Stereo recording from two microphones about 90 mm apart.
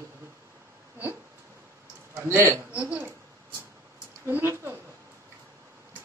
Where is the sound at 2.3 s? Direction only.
35° right (ahead or behind).